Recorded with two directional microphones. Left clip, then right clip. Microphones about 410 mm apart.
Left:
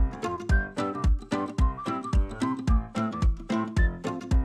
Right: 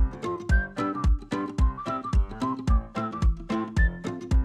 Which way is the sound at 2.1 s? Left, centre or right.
Centre.